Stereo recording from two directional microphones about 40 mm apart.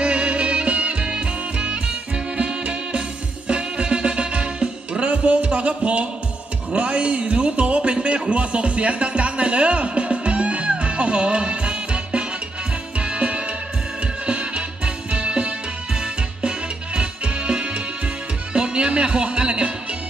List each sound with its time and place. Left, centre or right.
0.0 s music: right
6.7 s a sound: right
7.9 s music: right